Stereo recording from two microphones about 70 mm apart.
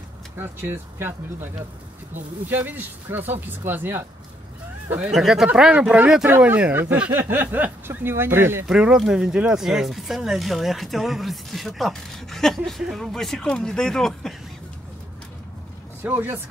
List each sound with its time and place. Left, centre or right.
0.4 s speech: right
5.1 s speech: centre
5.6 s speech: centre
6.7 s speech: right
8.6 s speech: centre
16.0 s speech: right